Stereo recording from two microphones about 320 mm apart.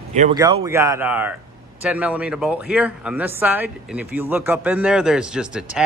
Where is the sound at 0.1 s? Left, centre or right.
Right.